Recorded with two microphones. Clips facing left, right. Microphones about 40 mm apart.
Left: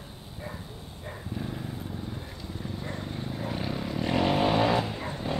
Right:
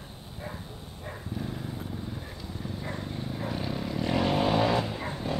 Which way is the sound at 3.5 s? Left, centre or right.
Centre.